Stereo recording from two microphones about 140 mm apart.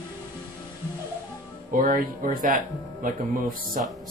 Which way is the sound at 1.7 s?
80° right.